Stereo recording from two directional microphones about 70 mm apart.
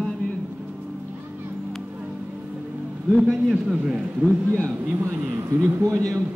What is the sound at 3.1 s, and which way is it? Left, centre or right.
Speech, centre.